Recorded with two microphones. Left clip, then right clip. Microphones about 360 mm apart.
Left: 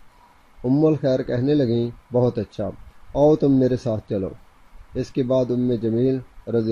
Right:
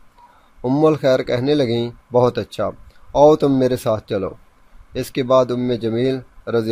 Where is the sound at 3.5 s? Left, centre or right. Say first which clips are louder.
Right 3 dB; right.